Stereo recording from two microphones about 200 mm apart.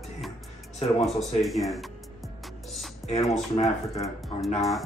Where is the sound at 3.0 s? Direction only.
35° left (ahead or behind).